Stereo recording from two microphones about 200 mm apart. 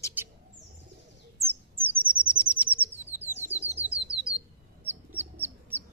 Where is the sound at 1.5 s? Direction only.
10° right (ahead or behind).